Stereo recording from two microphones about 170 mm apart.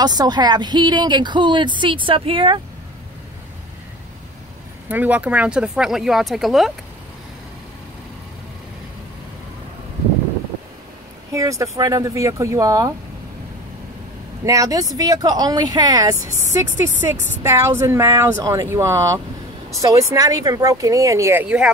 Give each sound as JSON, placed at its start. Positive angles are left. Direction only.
{"t": 0.0, "sound": "speech", "side_deg": -25}
{"t": 4.8, "sound": "speech", "side_deg": -10}
{"t": 11.3, "sound": "speech", "side_deg": -20}
{"t": 14.4, "sound": "speech", "side_deg": -20}